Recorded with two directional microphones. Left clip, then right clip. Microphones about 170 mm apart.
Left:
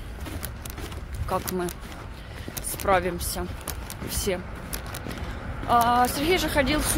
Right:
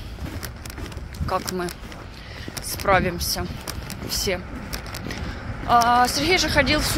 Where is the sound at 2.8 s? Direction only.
15° left (ahead or behind).